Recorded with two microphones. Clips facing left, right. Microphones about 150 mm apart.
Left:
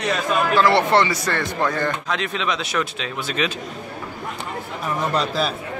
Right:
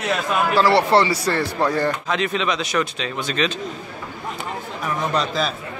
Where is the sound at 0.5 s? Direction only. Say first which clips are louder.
Right 1 dB; 35° right (ahead or behind).